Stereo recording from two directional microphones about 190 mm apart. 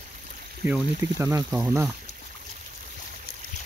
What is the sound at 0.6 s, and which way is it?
Speech, 10° right (ahead or behind).